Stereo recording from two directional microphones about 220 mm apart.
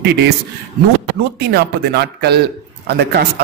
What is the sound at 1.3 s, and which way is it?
A man's voice, 45° right (ahead or behind).